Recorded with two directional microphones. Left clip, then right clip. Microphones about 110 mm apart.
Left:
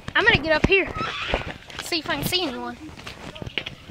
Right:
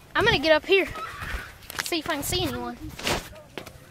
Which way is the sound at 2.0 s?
30° right (ahead or behind).